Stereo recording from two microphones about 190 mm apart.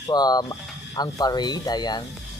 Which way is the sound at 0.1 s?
20° left (ahead or behind).